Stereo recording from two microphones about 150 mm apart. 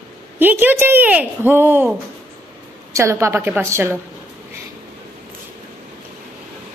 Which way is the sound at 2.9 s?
20° right (ahead or behind).